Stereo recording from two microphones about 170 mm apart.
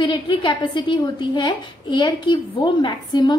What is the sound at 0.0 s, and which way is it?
A woman's voice, 30° left (ahead or behind).